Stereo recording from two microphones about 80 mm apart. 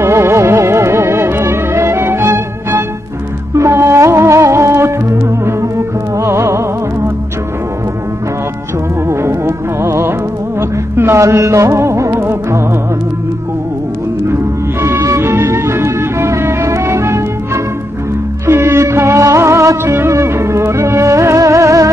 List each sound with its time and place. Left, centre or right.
0.0 s music: right
9.0 s music: right
14.2 s music: right
18.5 s music: right